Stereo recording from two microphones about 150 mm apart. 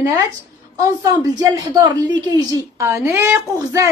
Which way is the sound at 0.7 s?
20° right (ahead or behind).